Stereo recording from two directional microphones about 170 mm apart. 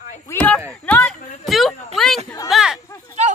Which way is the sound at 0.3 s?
10° left (ahead or behind).